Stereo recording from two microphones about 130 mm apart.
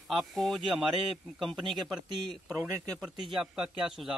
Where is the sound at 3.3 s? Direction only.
5° right (ahead or behind).